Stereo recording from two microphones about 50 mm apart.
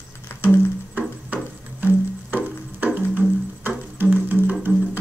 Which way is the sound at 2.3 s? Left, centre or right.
Right.